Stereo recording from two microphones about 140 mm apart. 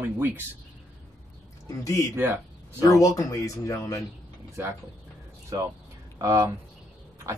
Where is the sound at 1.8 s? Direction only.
25° left (ahead or behind).